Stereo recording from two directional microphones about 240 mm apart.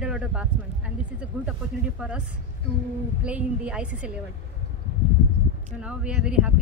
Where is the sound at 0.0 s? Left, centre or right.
Centre.